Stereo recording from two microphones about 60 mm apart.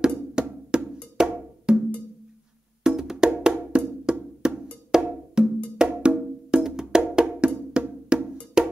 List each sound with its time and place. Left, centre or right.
0.3 s percussion: centre
1.1 s wood block: centre
2.8 s wood block: centre
4.9 s percussion: centre
5.4 s wood block: centre
7.2 s music: centre
8.6 s cowbell: centre